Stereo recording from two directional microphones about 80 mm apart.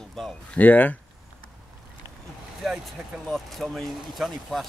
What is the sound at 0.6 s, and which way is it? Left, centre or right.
Speech, centre.